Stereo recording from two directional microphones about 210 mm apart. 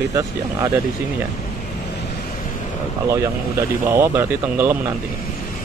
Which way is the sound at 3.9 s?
10° right (ahead or behind).